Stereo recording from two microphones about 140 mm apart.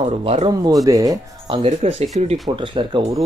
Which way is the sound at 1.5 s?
45° right (ahead or behind).